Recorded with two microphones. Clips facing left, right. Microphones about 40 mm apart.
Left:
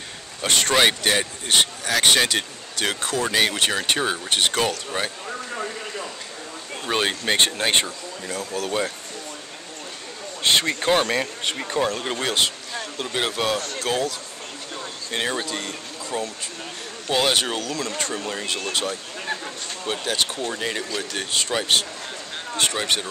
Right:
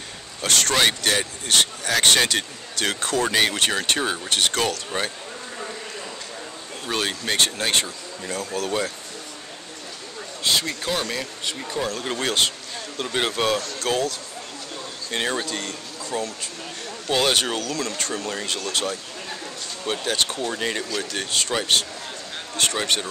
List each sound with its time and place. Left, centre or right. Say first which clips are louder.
0.4 s speech: left 2 dB; centre
6.9 s speech: left 3 dB; left
8.4 s speech: even; centre
10.4 s speech: left 4 dB; left
12.2 s speech: right 2 dB; centre
13.7 s speech: even; centre